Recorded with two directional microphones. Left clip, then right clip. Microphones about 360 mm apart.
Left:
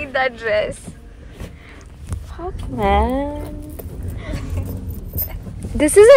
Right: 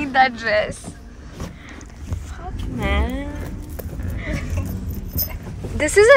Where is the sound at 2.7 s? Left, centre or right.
Centre.